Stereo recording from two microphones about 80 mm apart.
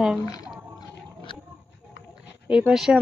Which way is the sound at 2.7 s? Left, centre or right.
Centre.